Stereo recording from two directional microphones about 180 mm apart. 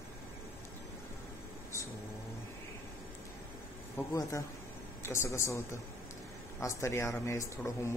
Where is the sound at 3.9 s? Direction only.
20° left (ahead or behind).